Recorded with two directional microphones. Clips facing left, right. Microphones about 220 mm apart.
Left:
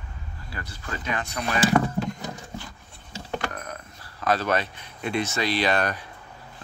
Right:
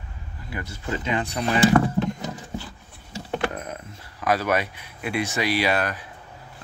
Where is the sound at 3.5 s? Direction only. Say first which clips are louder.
Right 3 dB; 20° right (ahead or behind).